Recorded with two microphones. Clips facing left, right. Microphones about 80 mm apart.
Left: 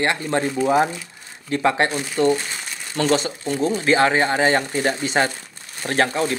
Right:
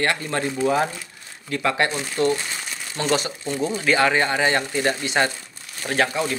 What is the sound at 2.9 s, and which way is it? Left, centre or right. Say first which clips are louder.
Speech: left 3 dB; left.